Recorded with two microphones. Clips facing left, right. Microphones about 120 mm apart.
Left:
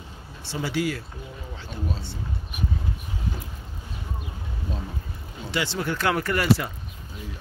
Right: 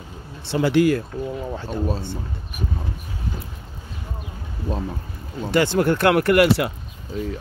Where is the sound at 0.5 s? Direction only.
60° right (ahead or behind).